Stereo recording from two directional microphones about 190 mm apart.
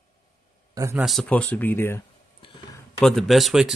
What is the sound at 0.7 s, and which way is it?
Speech, 15° right (ahead or behind).